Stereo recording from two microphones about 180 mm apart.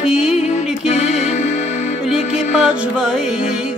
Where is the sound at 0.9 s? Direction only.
40° left (ahead or behind).